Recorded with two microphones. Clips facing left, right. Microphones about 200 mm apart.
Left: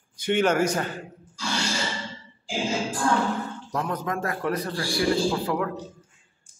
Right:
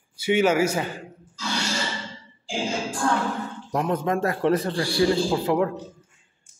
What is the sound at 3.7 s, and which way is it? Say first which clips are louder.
A man's voice: right 5 dB; 25° right (ahead or behind).